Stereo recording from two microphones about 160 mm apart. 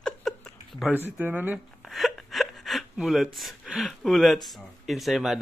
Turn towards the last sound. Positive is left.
turn(degrees=0)  # may be behind; listen again after turning